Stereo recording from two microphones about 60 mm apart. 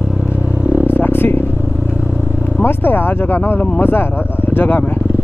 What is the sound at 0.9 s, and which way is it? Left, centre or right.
Vehicle, left.